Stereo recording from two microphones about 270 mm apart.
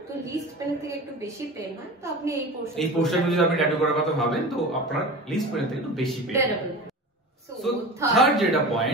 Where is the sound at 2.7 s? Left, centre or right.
Centre.